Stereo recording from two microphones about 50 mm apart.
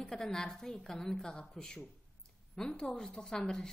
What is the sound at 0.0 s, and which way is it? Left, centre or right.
Speech, centre.